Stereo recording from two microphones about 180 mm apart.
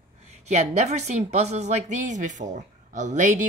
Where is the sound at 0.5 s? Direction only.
40° right (ahead or behind).